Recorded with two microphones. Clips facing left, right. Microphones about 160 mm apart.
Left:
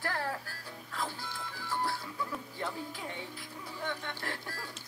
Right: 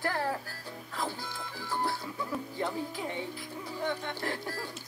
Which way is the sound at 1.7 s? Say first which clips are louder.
Right 2 dB; 20° right (ahead or behind).